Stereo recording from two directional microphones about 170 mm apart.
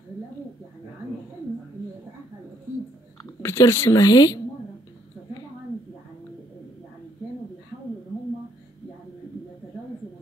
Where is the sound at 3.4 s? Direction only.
15° left (ahead or behind).